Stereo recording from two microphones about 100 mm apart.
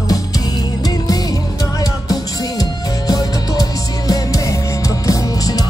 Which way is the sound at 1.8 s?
40° left (ahead or behind).